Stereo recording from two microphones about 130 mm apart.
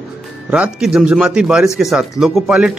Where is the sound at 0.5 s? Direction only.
5° right (ahead or behind).